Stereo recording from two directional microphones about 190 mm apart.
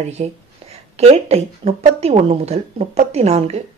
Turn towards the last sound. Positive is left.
turn(degrees=-35)  # may be behind; listen again after turning